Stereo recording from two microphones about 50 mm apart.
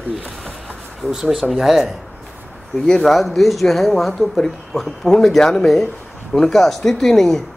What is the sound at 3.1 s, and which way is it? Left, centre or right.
Speech, centre.